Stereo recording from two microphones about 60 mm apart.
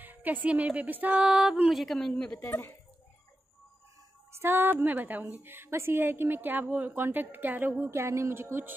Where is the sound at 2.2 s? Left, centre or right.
Centre.